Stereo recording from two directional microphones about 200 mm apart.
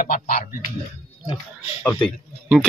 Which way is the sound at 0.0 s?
45° left (ahead or behind).